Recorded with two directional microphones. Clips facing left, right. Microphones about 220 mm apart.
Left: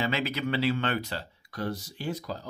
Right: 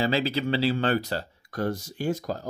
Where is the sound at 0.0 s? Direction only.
30° right (ahead or behind).